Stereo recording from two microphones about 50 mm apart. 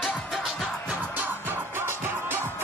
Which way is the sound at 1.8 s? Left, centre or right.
Right.